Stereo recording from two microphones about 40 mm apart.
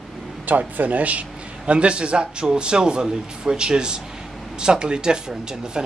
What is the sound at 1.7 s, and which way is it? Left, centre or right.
Speech, right.